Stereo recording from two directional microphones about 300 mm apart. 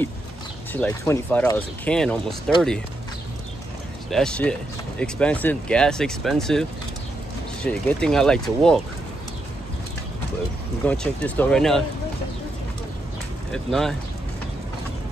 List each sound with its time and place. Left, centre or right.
0.7 s speech: centre
4.1 s speech: centre
7.6 s speech: centre
10.9 s speech: centre
13.5 s speech: centre